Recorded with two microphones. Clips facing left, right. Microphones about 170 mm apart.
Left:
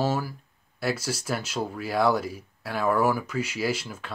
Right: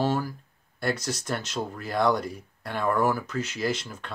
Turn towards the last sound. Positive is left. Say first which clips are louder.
# left 1 dB
turn(degrees=5)  # may be behind; listen again after turning